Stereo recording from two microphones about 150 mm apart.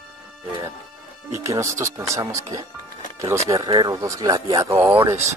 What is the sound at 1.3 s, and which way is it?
Speech, 20° right (ahead or behind).